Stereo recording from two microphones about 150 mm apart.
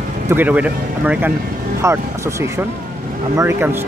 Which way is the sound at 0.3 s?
10° right (ahead or behind).